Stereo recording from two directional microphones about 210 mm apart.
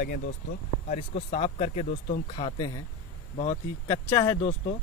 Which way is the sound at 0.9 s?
30° left (ahead or behind).